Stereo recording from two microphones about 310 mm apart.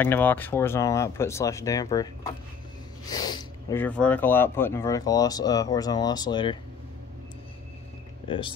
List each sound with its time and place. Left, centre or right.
0.0 s speech: centre
3.1 s speech: centre
8.3 s speech: centre